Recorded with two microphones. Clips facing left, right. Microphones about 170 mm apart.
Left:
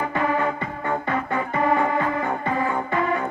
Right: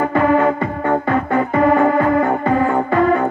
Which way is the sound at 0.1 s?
60° right (ahead or behind).